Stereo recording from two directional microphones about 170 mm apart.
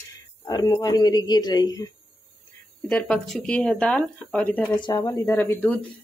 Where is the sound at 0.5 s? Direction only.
25° left (ahead or behind).